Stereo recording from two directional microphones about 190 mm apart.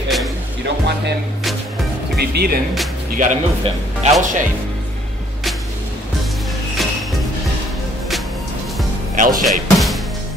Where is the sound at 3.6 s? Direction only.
35° right (ahead or behind).